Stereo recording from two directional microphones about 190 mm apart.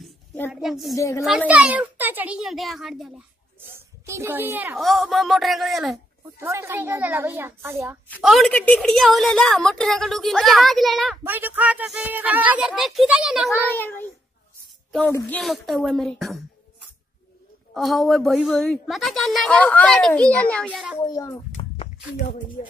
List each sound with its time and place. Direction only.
0.5 s a woman's voice: centre (ahead or behind)
0.9 s a child's voice: 15° left (ahead or behind)
1.5 s a woman's voice: 5° right (ahead or behind)
4.0 s a woman's voice: 15° right (ahead or behind)
6.4 s speech: 15° right (ahead or behind)
8.2 s a woman's voice: centre (ahead or behind)
13.7 s a child's voice: 10° left (ahead or behind)
17.7 s a woman's voice: centre (ahead or behind)
21.0 s a child's voice: 20° left (ahead or behind)